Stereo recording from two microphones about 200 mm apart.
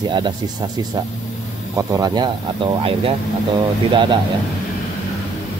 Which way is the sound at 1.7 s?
15° right (ahead or behind).